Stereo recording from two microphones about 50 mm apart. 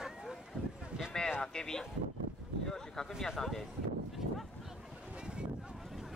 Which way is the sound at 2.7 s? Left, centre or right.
Centre.